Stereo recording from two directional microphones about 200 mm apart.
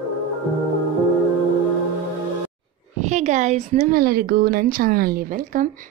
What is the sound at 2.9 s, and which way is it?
Speech, 35° right (ahead or behind).